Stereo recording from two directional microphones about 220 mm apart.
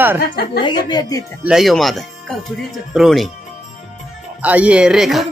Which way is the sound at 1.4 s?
Centre (ahead or behind).